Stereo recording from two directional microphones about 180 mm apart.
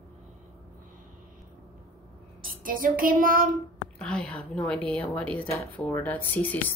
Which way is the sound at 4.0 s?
5° left (ahead or behind).